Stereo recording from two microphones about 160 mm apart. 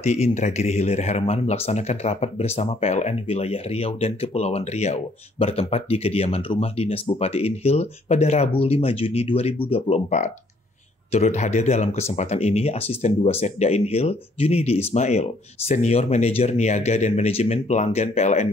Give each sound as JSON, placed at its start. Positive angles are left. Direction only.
{"t": 0.0, "sound": "speech", "side_deg": 45}